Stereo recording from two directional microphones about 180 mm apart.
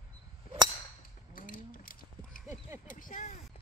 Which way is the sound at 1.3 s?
50° left (ahead or behind).